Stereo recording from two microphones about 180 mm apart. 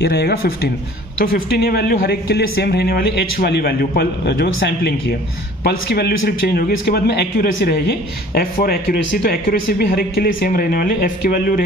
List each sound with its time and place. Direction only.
0.0 s speech: 65° left (ahead or behind)